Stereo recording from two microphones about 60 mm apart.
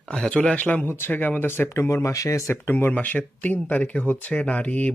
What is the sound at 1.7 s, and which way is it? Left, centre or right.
Speech, left.